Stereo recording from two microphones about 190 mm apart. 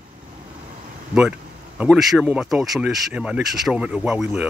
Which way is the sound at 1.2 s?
5° right (ahead or behind).